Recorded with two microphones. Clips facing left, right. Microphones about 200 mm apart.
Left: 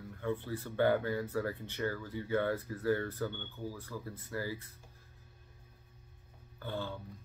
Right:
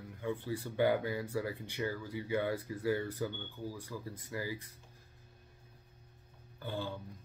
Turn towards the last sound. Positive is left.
turn(degrees=-15)  # may be behind; listen again after turning